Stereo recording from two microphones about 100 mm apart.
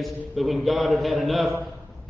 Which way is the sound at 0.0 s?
Centre (ahead or behind).